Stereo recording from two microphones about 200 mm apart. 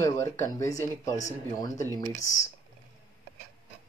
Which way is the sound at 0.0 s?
15° left (ahead or behind).